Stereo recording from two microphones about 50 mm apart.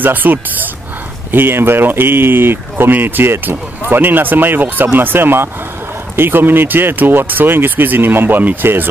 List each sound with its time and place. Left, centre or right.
0.0 s speech: right
1.3 s speech: right